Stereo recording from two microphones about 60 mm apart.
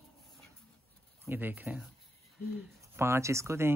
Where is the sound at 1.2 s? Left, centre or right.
Right.